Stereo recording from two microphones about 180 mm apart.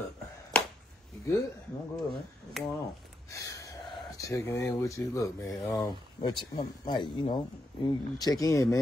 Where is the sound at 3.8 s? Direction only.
Centre (ahead or behind).